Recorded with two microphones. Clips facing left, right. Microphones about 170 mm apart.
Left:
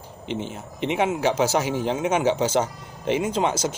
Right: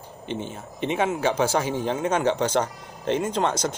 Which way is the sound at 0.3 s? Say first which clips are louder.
Left 2 dB; 85° left.